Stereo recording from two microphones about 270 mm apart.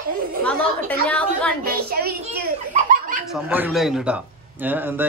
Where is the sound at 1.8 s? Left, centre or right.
Right.